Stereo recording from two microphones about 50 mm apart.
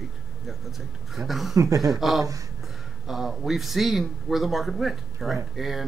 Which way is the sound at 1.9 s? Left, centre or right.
Centre.